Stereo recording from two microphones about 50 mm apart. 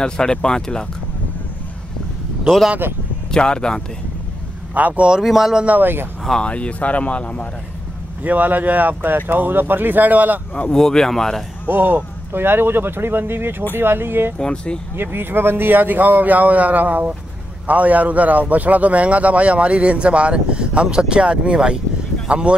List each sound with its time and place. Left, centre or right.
0.0 s speech: centre
3.3 s speech: centre
4.7 s speech: right
5.2 s speech: centre
5.7 s speech: right
6.4 s speech: left
8.2 s speech: right
10.5 s speech: left
10.8 s speech: centre
11.6 s speech: right
14.4 s speech: left
15.0 s speech: right